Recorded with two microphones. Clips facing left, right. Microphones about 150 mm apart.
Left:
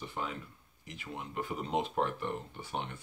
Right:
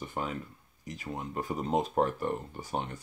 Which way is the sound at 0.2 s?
45° right (ahead or behind).